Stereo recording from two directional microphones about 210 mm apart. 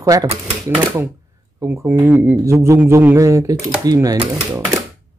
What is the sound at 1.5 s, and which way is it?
Speech, 10° right (ahead or behind).